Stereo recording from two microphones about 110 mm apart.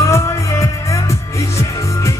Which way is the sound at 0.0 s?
25° left (ahead or behind).